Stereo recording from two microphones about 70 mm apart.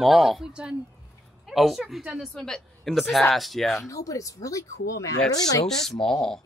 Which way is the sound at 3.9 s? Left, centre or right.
Left.